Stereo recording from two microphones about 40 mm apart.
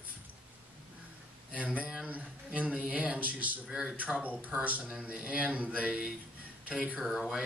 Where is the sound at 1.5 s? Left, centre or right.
Right.